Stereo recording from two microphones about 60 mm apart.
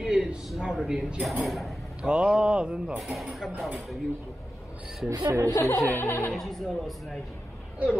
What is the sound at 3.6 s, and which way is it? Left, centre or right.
Speech, centre.